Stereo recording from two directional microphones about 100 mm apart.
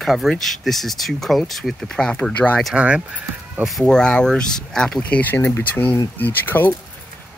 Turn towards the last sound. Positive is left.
turn(degrees=20)  # may be behind; listen again after turning